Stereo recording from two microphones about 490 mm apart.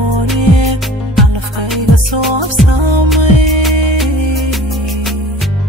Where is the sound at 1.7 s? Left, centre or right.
Right.